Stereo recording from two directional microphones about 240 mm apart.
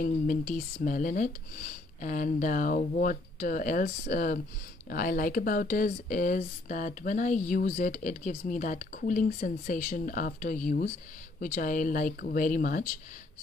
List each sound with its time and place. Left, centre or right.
0.0 s speech: left